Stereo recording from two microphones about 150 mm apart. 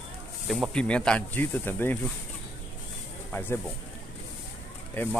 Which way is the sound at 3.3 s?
15° left (ahead or behind).